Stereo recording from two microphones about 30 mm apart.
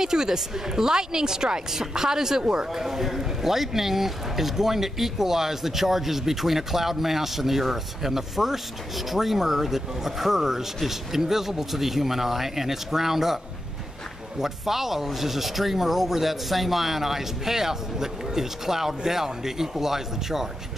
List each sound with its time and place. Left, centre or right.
0.0 s a woman's voice: right
2.8 s speech: centre
14.4 s speech: centre